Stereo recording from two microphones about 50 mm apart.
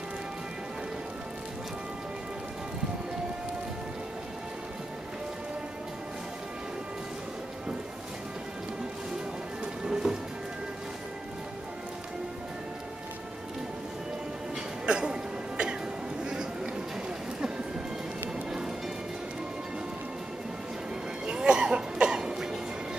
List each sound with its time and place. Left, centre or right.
9.8 s music: centre
14.9 s music: centre
21.3 s cough: centre